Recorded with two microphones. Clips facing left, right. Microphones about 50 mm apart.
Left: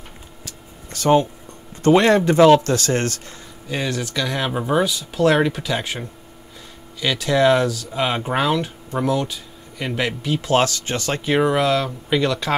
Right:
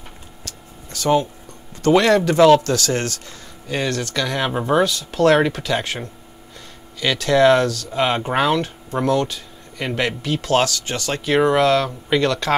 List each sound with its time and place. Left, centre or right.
0.9 s speech: left
3.6 s speech: centre
4.5 s speech: centre
4.8 s speech: centre
7.0 s speech: centre
7.9 s speech: centre
10.4 s speech: left
11.3 s speech: centre